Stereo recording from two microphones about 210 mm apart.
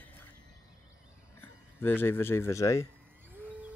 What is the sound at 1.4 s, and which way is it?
Speech, 10° left (ahead or behind).